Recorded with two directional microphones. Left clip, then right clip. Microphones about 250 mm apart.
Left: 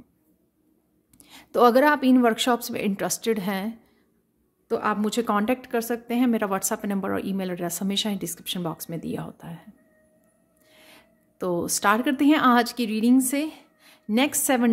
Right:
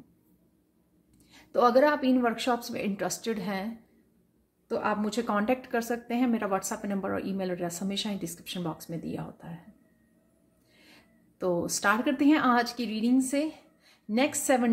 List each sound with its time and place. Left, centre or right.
1.1 s speech: left
10.7 s speech: left